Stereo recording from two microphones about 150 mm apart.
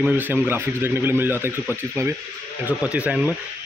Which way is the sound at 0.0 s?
10° right (ahead or behind).